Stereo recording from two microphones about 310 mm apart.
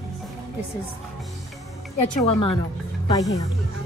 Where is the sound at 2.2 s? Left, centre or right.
Centre.